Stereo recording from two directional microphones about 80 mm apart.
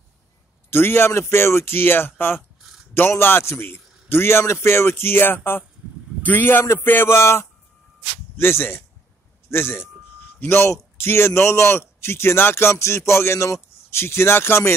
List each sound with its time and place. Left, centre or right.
0.7 s a man's voice: left